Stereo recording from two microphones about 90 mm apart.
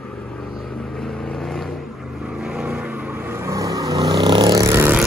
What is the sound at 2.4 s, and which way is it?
Vehicle, 5° right (ahead or behind).